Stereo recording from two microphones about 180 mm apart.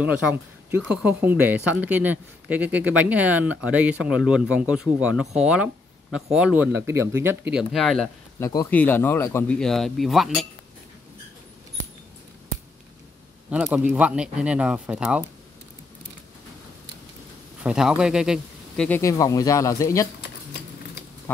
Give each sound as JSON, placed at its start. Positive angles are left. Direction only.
{"t": 0.0, "sound": "speech", "side_deg": -10}
{"t": 8.4, "sound": "speech", "side_deg": 15}
{"t": 13.5, "sound": "speech", "side_deg": -5}
{"t": 17.6, "sound": "speech", "side_deg": -5}
{"t": 18.9, "sound": "speech", "side_deg": 15}